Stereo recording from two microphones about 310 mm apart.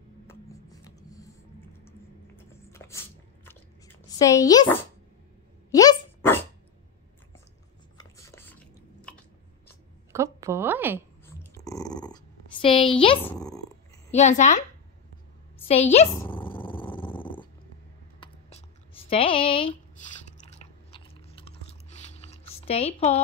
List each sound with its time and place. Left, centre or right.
0.3 s writing: centre
2.5 s a sound: centre
4.1 s speech: centre
5.7 s dog: centre
8.0 s biting: centre
10.1 s a woman's voice: centre
11.6 s dog: centre
13.2 s purr: centre
14.1 s a woman's voice: left
15.6 s a woman's voice: centre
16.2 s dog: centre
18.2 s a sound: centre
19.0 s speech: centre
20.9 s chewing: centre